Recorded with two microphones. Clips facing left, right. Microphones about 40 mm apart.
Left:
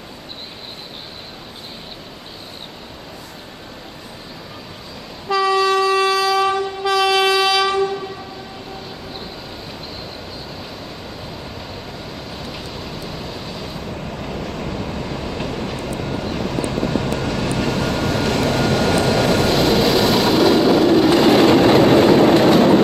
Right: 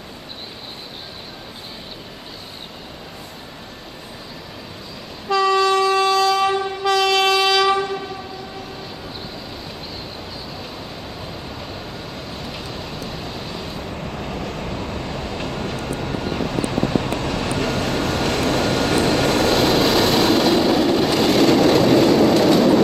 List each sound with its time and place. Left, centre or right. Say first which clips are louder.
5.3 s train: even; centre
12.4 s rain: even; centre
13.2 s vehicle: even; centre
21.1 s train: left 3 dB; centre